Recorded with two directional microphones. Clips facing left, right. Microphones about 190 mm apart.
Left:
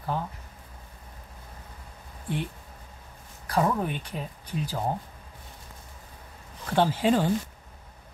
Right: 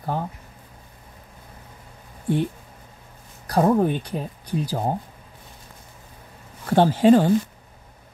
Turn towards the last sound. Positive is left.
turn(degrees=-45)  # may be behind; listen again after turning